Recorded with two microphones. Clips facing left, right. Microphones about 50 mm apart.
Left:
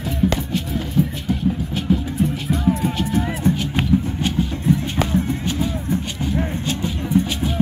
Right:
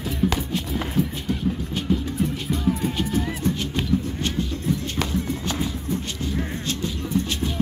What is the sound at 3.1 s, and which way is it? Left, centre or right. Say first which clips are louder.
Music: left 4 dB; centre.